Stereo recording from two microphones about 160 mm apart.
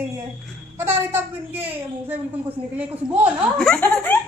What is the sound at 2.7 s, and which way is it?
Speech, 10° right (ahead or behind).